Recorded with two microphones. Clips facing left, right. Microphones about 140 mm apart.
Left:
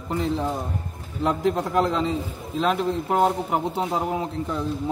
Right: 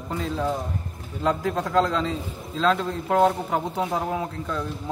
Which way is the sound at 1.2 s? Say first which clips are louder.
Left 2 dB; 20° left (ahead or behind).